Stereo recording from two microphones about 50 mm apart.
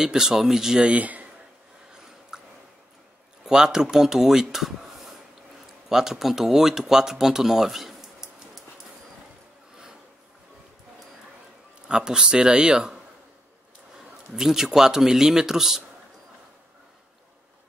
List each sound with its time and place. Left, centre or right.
0.0 s speech: centre
0.8 s speech: right
2.3 s a sound: centre
3.4 s speech: centre
11.9 s speech: centre